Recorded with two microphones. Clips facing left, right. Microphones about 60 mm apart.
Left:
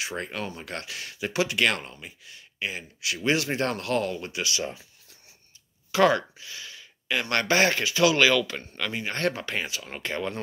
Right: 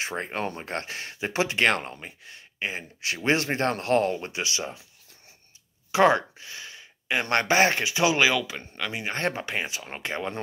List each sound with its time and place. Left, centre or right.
0.0 s speech: right
5.9 s speech: right